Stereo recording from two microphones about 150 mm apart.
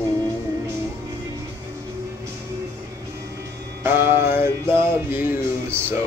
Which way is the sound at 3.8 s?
15° right (ahead or behind).